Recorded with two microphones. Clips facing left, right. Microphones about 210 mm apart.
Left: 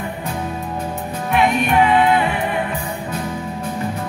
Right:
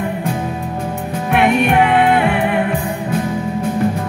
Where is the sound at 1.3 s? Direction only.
60° right (ahead or behind).